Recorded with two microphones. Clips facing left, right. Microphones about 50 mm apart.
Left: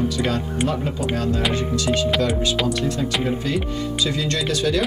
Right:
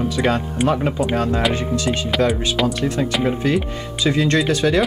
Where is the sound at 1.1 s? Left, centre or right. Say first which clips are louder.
Right 3 dB; right.